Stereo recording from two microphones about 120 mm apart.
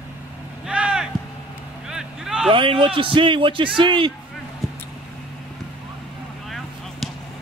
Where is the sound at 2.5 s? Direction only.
45° right (ahead or behind).